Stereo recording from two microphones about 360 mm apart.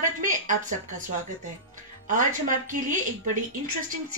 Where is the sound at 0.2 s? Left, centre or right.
Right.